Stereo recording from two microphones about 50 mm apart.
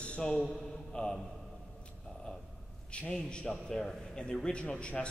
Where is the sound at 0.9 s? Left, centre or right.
Centre.